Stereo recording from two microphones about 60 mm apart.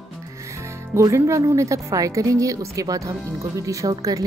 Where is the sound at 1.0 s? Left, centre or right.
Right.